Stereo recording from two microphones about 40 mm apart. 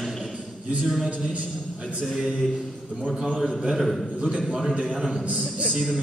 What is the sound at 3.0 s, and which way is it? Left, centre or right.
A man's voice, centre.